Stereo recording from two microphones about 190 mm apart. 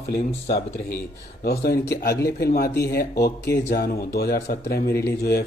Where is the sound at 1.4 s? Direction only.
55° left (ahead or behind).